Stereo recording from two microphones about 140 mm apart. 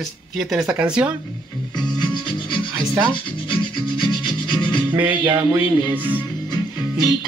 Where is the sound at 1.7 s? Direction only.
30° left (ahead or behind).